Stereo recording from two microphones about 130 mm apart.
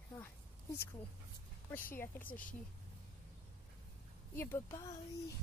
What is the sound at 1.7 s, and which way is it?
Speech, 15° left (ahead or behind).